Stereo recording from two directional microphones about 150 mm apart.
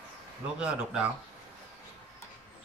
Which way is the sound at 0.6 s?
5° right (ahead or behind).